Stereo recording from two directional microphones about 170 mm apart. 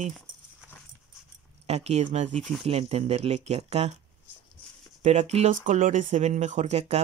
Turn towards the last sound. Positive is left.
turn(degrees=-40)  # may be behind; listen again after turning